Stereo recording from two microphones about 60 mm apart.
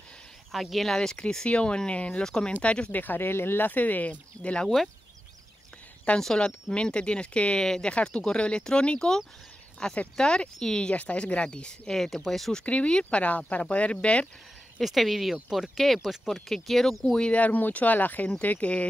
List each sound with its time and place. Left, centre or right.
0.5 s speech: centre
3.0 s speech: left
6.1 s speech: centre
11.9 s speech: centre
12.6 s speech: centre
14.8 s speech: centre
17.2 s speech: left